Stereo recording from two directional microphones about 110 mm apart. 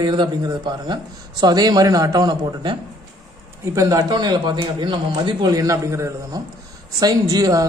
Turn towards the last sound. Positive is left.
turn(degrees=-30)  # may be behind; listen again after turning